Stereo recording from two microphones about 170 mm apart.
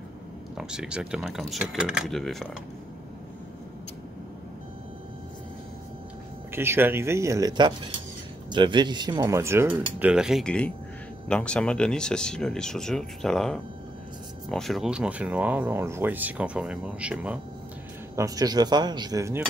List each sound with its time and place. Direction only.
0.6 s speech: 5° right (ahead or behind)
6.5 s speech: 15° right (ahead or behind)
18.1 s speech: 20° right (ahead or behind)